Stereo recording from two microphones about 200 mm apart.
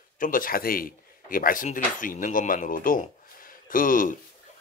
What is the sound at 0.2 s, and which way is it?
A man's voice, 45° left (ahead or behind).